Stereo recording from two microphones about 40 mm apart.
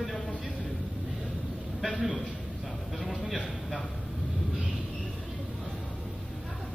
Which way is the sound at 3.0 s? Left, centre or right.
Centre.